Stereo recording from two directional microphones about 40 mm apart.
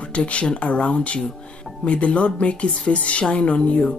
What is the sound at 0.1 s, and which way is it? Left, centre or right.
Speech, left.